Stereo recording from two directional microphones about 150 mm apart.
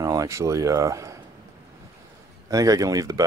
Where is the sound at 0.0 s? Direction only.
20° right (ahead or behind).